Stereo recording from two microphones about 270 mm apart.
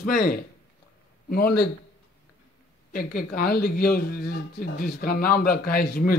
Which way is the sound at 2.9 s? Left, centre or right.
Left.